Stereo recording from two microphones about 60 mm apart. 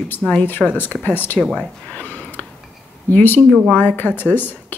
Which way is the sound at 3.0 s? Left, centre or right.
Left.